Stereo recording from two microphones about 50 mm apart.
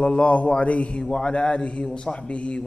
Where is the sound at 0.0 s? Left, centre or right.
Left.